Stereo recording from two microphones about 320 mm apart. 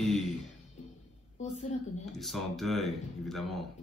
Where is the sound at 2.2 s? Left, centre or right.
Centre.